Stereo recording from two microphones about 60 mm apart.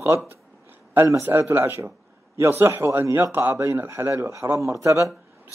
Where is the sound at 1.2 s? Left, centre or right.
Right.